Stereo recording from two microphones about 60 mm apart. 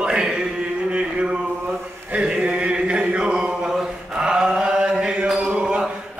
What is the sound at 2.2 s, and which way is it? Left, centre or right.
Chant, centre.